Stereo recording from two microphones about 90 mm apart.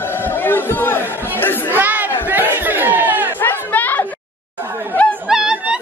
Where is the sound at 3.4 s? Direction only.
20° left (ahead or behind).